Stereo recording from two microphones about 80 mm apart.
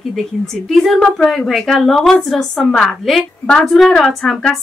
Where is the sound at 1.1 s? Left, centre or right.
Centre.